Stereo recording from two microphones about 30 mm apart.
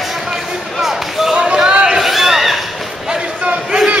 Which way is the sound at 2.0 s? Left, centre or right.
Centre.